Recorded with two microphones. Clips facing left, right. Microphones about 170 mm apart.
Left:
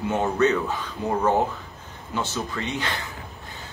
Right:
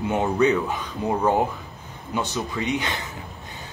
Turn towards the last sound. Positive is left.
turn(degrees=-20)  # may be behind; listen again after turning